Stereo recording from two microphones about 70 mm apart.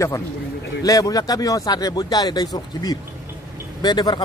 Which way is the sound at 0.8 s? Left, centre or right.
Left.